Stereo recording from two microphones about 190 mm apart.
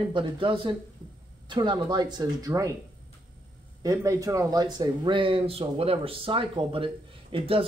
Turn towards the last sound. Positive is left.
turn(degrees=-30)  # may be behind; listen again after turning